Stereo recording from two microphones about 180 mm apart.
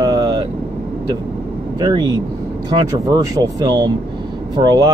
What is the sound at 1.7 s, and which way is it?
Speech, 25° right (ahead or behind).